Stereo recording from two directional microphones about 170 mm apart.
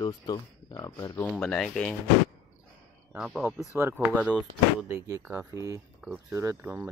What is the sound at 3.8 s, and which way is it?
Speech, 15° right (ahead or behind).